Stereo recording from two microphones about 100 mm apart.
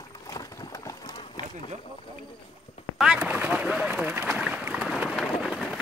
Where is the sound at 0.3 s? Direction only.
35° left (ahead or behind).